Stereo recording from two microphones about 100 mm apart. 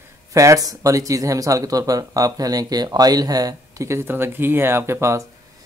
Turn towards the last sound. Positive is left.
turn(degrees=-25)  # may be behind; listen again after turning